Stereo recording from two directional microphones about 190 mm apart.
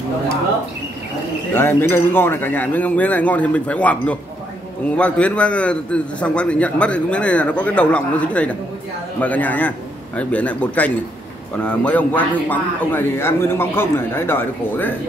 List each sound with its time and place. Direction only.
1.5 s a man's voice: 10° left (ahead or behind)